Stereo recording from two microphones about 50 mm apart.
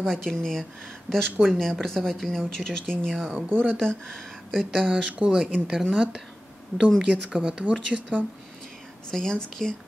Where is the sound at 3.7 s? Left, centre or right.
Centre.